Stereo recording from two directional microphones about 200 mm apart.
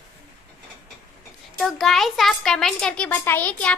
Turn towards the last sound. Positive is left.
turn(degrees=5)  # may be behind; listen again after turning